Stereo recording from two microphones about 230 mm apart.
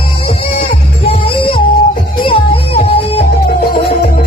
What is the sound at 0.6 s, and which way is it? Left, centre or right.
Music, left.